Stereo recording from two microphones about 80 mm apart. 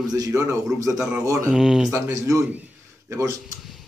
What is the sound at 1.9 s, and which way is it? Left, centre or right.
A man's voice, right.